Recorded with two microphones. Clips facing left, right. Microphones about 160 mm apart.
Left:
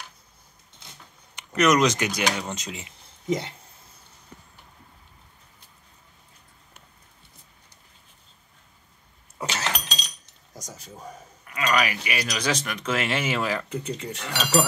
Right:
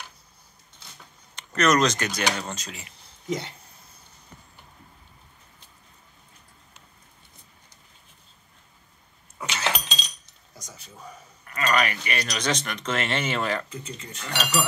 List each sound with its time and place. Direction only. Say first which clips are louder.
1.3 s speech: left 1 dB; 15° left (ahead or behind)
9.4 s a sound: right 1 dB; 35° left (ahead or behind)
11.4 s speech: even; 5° left (ahead or behind)
13.7 s speech: left 7 dB; 70° left (ahead or behind)
14.2 s speech: right 2 dB; centre (ahead or behind)